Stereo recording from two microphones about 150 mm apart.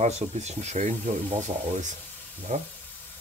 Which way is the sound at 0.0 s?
50° right (ahead or behind).